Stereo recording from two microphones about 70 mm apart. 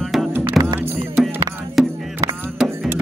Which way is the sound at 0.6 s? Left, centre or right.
Centre.